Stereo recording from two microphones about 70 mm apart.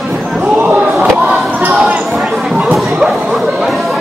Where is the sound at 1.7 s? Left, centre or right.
Centre.